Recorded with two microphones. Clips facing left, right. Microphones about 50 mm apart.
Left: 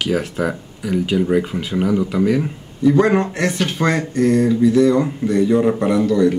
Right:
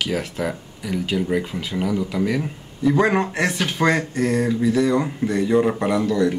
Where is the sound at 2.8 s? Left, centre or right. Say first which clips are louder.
Left 4 dB; centre.